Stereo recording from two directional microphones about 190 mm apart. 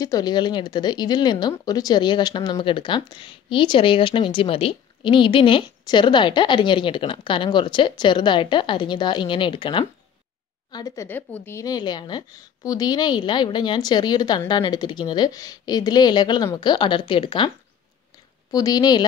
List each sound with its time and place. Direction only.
0.0 s speech: 20° left (ahead or behind)
18.5 s speech: 20° left (ahead or behind)